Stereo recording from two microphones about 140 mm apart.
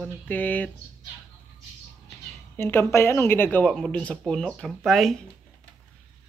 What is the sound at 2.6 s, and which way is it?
Speech, 15° left (ahead or behind).